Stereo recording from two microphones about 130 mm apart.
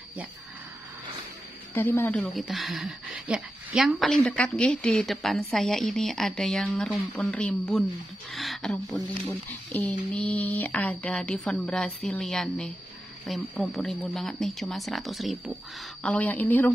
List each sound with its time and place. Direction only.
1.7 s speech: 20° left (ahead or behind)
2.3 s a woman's voice: centre (ahead or behind)
16.0 s speech: 10° left (ahead or behind)